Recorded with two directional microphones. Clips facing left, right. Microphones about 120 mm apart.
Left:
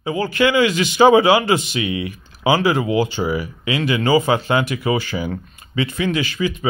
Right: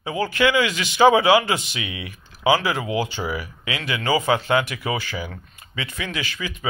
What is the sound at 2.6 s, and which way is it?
Speech, 25° left (ahead or behind).